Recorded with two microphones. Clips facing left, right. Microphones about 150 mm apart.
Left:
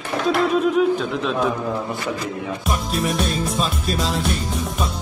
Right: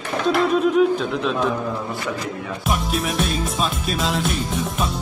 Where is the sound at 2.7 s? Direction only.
Centre (ahead or behind).